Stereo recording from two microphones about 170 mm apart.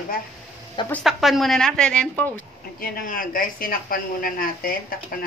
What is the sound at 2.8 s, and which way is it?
A woman's voice, 55° left (ahead or behind).